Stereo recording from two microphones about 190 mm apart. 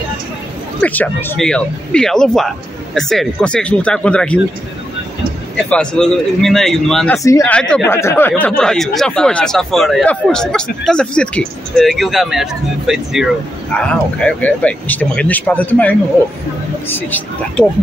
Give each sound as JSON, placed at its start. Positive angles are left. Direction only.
{"t": 0.7, "sound": "speech", "side_deg": 10}
{"t": 5.7, "sound": "speech", "side_deg": 5}
{"t": 7.2, "sound": "speech", "side_deg": 15}